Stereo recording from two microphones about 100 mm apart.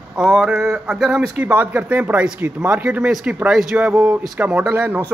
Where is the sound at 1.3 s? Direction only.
15° right (ahead or behind).